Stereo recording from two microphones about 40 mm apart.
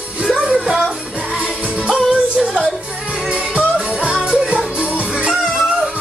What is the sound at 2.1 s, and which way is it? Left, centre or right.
Music, centre.